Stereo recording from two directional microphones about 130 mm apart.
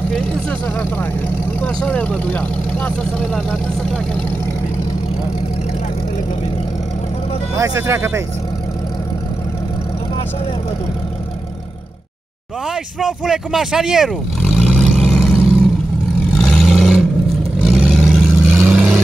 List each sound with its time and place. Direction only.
0.1 s speech: 5° left (ahead or behind)
7.5 s speech: 25° right (ahead or behind)
12.6 s speech: 5° right (ahead or behind)
14.8 s vehicle: 5° left (ahead or behind)
16.3 s vehicle: centre (ahead or behind)
18.6 s vehicle: 10° right (ahead or behind)